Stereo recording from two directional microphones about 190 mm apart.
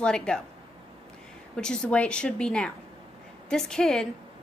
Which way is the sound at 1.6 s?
5° left (ahead or behind).